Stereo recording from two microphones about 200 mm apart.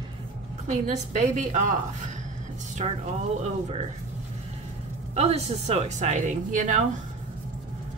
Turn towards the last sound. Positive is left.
turn(degrees=-40)  # may be behind; listen again after turning